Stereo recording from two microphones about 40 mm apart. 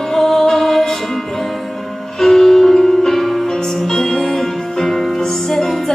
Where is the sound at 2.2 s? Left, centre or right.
Centre.